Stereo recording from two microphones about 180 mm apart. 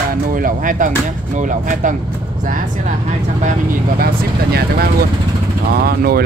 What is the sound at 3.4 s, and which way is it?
Speech, 45° right (ahead or behind).